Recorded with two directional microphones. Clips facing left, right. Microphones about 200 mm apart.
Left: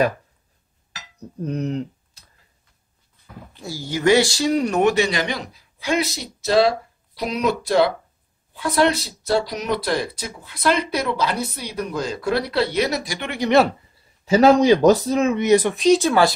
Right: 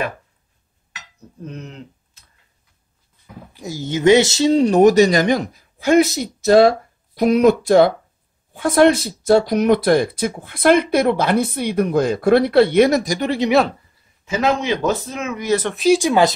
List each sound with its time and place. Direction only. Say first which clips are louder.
0.9 s dishes: left 6 dB; 40° left (ahead or behind)
3.3 s speech: right 3 dB; 15° right (ahead or behind); by 13.4 s 40° right (ahead or behind)
14.2 s speech: left 6 dB; 35° left (ahead or behind)
15.4 s speech: left 1 dB; 15° left (ahead or behind)
15.7 s speech: right 1 dB; 5° right (ahead or behind)